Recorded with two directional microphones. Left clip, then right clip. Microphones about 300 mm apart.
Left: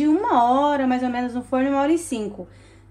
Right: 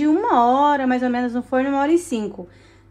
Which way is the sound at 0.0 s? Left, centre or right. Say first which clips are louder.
Right 2 dB; right.